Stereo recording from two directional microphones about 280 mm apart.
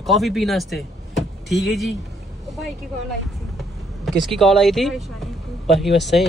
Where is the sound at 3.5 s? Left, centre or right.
Centre.